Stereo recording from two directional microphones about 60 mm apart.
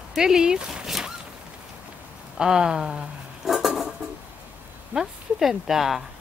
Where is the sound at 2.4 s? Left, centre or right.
Centre.